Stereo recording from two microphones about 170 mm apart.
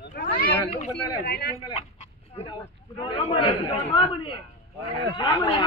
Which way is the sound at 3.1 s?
30° left (ahead or behind).